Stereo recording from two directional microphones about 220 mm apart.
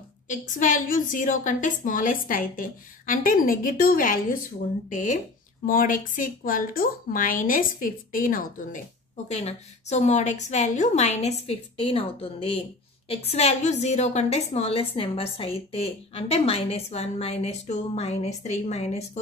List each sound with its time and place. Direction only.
0.3 s a woman's voice: 35° left (ahead or behind)